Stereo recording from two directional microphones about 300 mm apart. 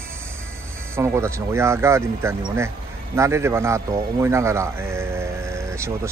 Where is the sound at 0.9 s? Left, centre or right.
Centre.